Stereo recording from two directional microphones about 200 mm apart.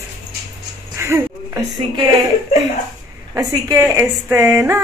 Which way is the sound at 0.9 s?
15° right (ahead or behind).